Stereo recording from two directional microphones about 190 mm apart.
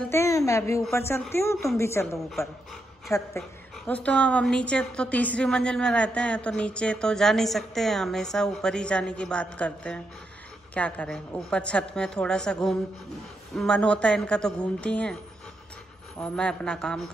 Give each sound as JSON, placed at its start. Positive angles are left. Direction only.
{"t": 0.1, "sound": "a woman's voice", "side_deg": 15}
{"t": 2.1, "sound": "a woman's voice", "side_deg": 0}
{"t": 3.1, "sound": "a woman's voice", "side_deg": 15}
{"t": 16.2, "sound": "a woman's voice", "side_deg": 5}